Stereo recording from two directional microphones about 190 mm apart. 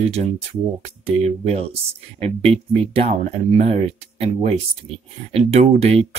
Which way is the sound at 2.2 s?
30° right (ahead or behind).